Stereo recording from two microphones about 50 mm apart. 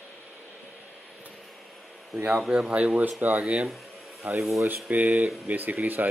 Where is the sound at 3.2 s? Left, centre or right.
Right.